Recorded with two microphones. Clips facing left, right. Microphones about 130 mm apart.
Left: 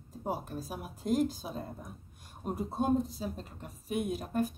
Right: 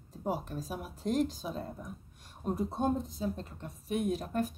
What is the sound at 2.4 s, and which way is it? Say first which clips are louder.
Speech: right 1 dB; 10° left (ahead or behind).